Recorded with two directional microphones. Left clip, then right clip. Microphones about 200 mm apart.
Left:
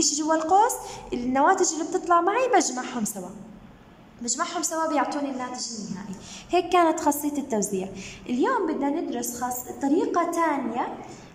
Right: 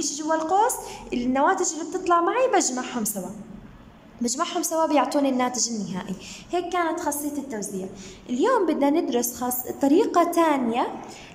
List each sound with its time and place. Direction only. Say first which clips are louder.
0.0 s a woman's voice: left 1 dB; 5° left (ahead or behind)
4.2 s a woman's voice: right 2 dB; 10° right (ahead or behind); by 6.0 s 25° right (ahead or behind)
6.5 s a woman's voice: left 4 dB; 5° left (ahead or behind)
8.3 s a woman's voice: right 3 dB; centre (ahead or behind)